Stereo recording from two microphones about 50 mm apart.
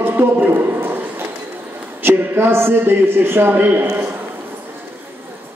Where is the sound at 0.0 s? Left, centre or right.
Right.